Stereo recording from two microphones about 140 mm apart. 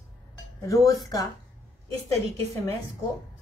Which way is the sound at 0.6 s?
25° left (ahead or behind).